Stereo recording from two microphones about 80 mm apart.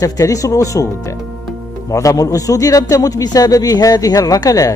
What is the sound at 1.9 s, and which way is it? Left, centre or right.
Speech, left.